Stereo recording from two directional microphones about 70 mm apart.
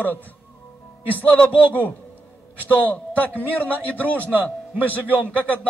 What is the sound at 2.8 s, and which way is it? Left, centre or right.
A man's voice, left.